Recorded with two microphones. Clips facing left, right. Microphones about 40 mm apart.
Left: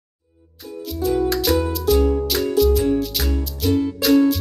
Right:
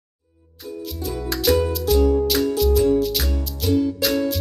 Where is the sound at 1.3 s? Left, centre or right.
Centre.